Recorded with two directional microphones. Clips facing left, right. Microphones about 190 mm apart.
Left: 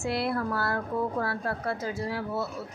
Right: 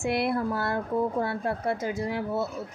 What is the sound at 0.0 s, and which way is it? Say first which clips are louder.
A woman's voice: right 2 dB; 20° right (ahead or behind).